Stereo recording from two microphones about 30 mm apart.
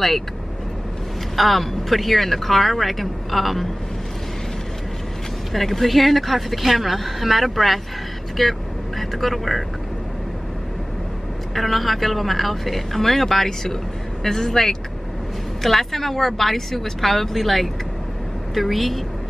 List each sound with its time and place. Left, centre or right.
1.3 s speech: centre
5.5 s speech: centre
11.5 s a woman's voice: centre